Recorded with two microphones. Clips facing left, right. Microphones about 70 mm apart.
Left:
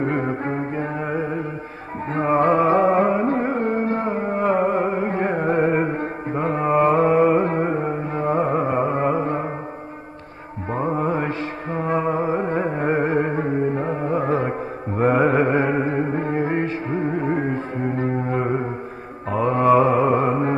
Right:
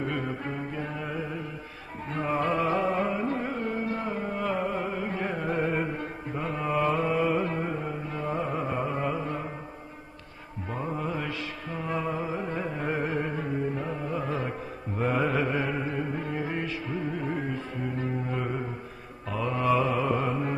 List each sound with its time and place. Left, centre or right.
0.0 s music: left
10.7 s music: left
19.3 s mantra: left